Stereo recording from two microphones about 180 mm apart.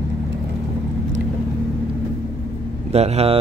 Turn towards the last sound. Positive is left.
turn(degrees=-35)  # may be behind; listen again after turning